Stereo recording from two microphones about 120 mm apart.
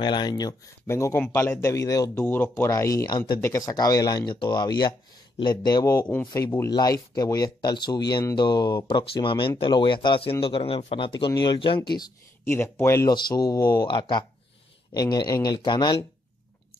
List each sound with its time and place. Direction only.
0.0 s speech: 40° left (ahead or behind)
0.8 s speech: 20° left (ahead or behind)
2.2 s speech: 15° left (ahead or behind); by 3.3 s 35° left (ahead or behind)
3.3 s speech: 25° left (ahead or behind)
5.9 s speech: 15° left (ahead or behind)
6.7 s speech: 30° left (ahead or behind)
12.4 s speech: 20° left (ahead or behind)
13.1 s speech: 35° left (ahead or behind)
13.6 s speech: 20° left (ahead or behind)
13.8 s speech: 40° left (ahead or behind)